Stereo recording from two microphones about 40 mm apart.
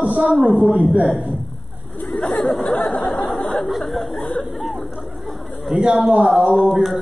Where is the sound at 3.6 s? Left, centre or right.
Centre.